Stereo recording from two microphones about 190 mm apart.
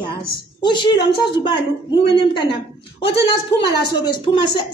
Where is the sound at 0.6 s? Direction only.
25° left (ahead or behind).